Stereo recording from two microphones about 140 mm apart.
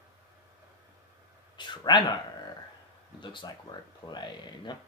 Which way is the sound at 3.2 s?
35° left (ahead or behind).